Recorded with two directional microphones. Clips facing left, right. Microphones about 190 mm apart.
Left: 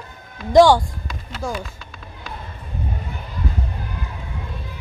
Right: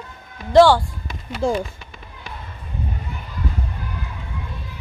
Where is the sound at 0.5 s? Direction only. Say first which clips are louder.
Even; 15° left (ahead or behind).